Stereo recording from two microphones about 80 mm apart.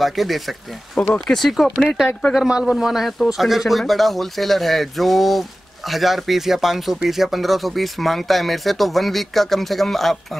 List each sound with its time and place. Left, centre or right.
0.0 s speech: centre
0.9 s speech: centre
1.2 s speech: centre